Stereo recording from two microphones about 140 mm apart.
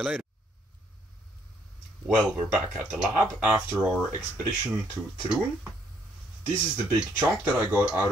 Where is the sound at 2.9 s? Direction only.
5° right (ahead or behind).